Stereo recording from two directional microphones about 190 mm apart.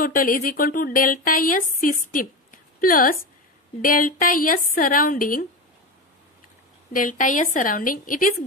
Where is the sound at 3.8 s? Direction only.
45° left (ahead or behind).